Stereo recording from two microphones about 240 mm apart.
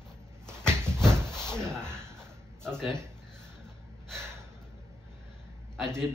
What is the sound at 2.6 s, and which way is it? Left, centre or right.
Speech, centre.